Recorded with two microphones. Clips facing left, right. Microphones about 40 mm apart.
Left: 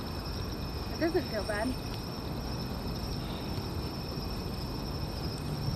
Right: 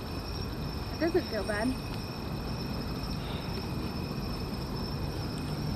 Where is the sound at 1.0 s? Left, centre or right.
Centre.